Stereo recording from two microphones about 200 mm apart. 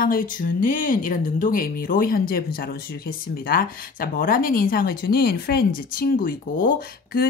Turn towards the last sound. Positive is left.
turn(degrees=45)  # may be behind; listen again after turning